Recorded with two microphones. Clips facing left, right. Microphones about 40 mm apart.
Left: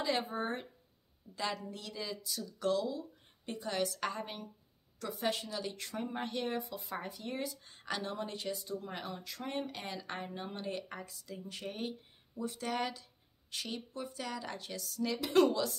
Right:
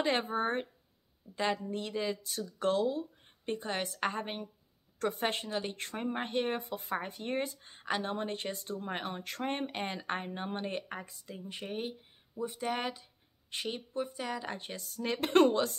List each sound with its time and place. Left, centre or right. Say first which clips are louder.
0.0 s speech: right 4 dB; right